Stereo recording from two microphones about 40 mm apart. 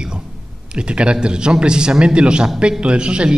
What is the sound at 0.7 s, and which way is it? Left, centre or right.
A man's voice, right.